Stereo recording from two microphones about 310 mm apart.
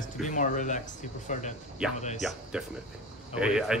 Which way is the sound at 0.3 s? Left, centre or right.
Left.